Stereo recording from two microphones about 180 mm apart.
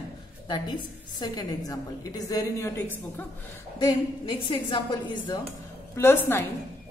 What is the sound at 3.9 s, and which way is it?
A woman's voice, 30° left (ahead or behind).